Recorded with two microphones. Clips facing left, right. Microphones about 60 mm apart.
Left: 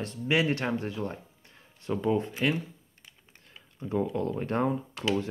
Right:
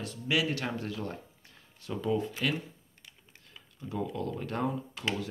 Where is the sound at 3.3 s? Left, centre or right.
Left.